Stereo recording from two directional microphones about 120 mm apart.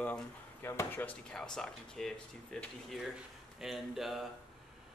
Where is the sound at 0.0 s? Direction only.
15° left (ahead or behind).